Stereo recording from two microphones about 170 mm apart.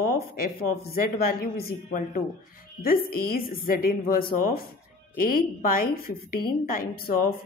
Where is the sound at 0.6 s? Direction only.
60° left (ahead or behind).